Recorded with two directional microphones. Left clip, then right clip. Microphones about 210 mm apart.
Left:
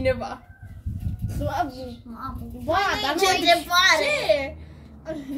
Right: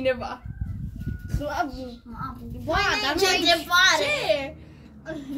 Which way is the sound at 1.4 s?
10° right (ahead or behind).